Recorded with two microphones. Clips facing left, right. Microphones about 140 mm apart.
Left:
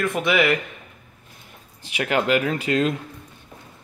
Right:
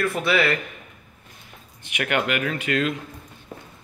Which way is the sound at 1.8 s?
30° left (ahead or behind).